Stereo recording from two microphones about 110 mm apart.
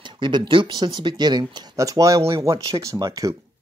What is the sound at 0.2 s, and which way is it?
Speech, 45° right (ahead or behind).